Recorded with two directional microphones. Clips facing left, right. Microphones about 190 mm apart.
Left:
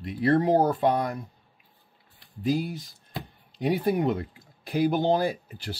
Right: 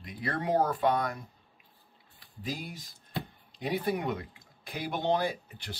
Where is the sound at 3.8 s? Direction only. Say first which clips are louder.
Left 7 dB; 30° left (ahead or behind).